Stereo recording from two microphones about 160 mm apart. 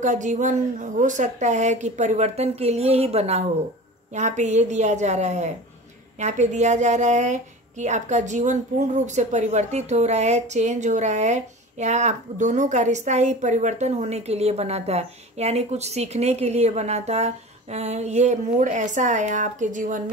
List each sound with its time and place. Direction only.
0.0 s speech: 50° right (ahead or behind)